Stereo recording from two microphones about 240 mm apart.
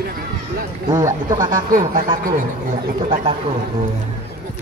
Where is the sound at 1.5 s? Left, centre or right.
Right.